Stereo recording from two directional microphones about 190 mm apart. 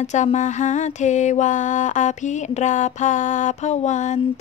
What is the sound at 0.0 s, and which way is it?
Mantra, 40° left (ahead or behind).